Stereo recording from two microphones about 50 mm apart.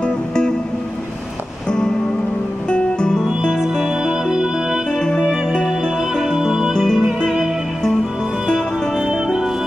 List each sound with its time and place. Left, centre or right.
0.0 s music: centre
2.7 s music: centre
4.0 s music: centre
4.9 s music: centre
6.7 s music: centre
9.0 s music: centre